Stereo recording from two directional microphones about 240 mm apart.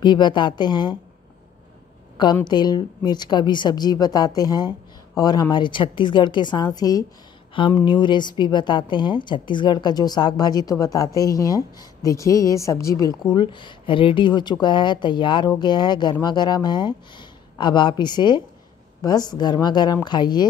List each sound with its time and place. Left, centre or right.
0.0 s a woman's voice: centre
2.1 s a woman's voice: centre